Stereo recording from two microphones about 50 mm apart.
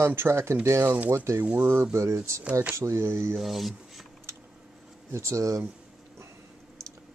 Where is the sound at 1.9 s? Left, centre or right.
Right.